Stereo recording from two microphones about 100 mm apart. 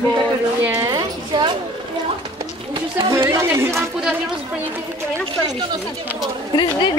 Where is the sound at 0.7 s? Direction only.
35° right (ahead or behind).